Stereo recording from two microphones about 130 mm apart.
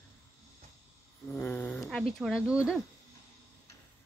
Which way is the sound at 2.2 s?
5° right (ahead or behind).